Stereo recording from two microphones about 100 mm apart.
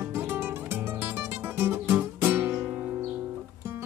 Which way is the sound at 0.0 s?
20° right (ahead or behind).